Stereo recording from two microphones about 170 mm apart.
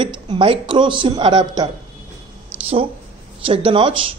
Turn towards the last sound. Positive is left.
turn(degrees=-30)  # may be behind; listen again after turning